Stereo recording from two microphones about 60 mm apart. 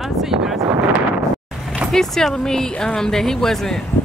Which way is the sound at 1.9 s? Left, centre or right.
Centre.